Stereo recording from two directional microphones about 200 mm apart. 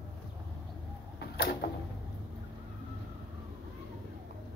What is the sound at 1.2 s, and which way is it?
Mechanisms, 50° left (ahead or behind).